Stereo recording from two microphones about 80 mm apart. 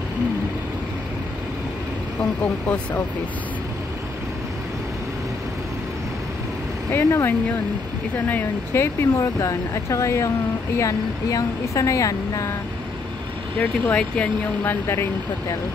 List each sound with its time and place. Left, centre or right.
2.4 s speech: centre
6.9 s speech: left
8.3 s a woman's voice: left
13.6 s speech: centre
14.6 s speech: left